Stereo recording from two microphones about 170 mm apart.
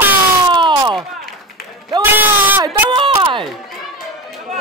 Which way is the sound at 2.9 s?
30° right (ahead or behind).